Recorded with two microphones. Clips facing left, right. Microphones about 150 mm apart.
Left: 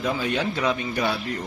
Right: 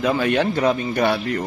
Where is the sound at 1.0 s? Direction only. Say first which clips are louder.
Right 8 dB; 70° right (ahead or behind).